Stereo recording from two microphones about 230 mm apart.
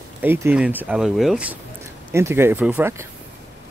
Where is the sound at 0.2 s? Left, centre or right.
Centre.